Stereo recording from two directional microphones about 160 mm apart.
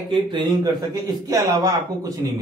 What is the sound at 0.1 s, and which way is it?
A man's voice, 30° right (ahead or behind).